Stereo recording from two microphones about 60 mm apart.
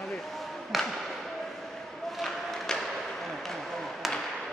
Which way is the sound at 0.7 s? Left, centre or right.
Centre.